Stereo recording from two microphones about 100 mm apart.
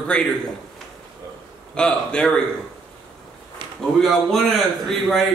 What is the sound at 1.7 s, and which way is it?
Speech, 10° left (ahead or behind).